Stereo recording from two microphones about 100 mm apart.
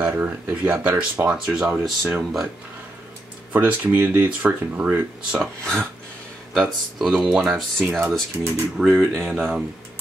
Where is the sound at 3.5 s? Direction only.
20° right (ahead or behind).